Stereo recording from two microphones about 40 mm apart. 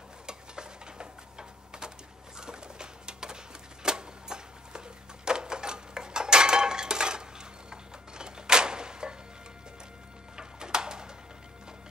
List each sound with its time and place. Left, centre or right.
0.3 s stir: centre
2.3 s pigeon: centre
3.8 s a sound: centre
10.3 s music: centre